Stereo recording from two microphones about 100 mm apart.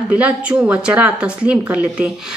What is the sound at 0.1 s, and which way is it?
A woman's voice, 10° right (ahead or behind).